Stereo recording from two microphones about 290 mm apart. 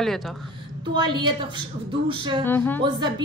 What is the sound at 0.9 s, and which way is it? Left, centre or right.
A woman's voice, centre.